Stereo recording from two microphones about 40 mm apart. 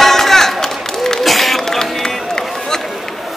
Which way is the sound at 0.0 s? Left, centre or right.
Centre.